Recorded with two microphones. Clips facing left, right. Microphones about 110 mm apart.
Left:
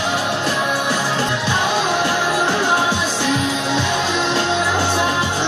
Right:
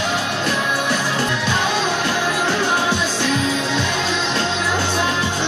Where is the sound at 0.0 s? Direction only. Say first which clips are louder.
Left 1 dB; 15° left (ahead or behind).